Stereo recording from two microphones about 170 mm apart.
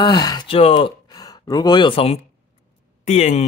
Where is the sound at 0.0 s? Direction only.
25° left (ahead or behind).